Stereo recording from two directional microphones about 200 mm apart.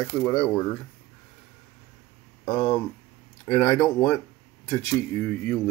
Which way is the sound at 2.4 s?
10° left (ahead or behind).